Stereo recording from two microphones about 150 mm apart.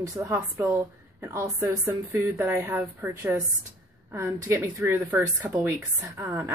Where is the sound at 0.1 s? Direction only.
20° right (ahead or behind).